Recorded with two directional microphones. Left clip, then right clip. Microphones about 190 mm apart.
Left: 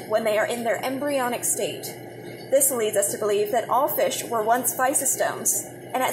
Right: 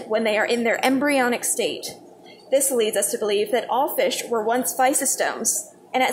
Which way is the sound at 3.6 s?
15° right (ahead or behind).